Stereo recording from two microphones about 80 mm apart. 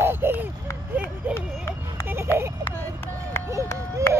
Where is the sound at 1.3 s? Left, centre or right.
Left.